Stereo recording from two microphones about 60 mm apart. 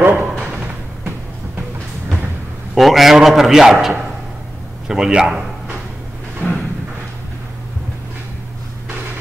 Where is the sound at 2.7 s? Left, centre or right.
Centre.